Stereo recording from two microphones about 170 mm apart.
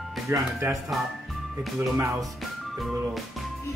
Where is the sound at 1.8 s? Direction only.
15° right (ahead or behind).